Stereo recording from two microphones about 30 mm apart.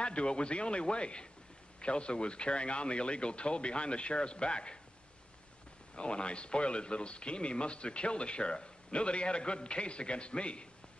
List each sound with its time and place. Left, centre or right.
0.0 s speech: left
5.9 s speech: left